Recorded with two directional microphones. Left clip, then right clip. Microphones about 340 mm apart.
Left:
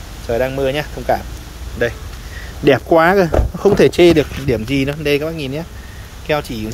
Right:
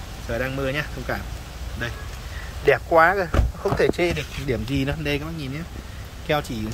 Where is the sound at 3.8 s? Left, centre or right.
Left.